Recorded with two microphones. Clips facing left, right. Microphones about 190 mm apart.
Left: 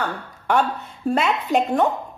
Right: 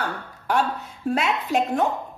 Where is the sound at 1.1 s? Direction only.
Centre (ahead or behind).